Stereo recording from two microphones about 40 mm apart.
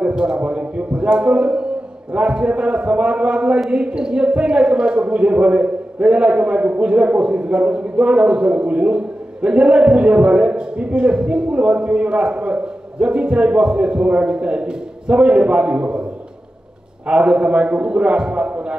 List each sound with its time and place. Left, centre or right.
0.0 s a man's voice: right
17.1 s a man's voice: right